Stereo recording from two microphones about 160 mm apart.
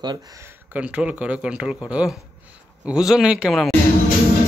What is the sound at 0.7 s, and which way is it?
Speech, 5° right (ahead or behind).